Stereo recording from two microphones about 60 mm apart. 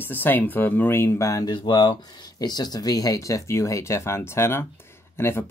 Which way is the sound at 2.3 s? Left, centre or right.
Left.